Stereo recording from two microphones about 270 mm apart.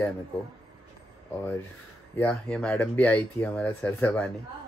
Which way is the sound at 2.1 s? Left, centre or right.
Centre.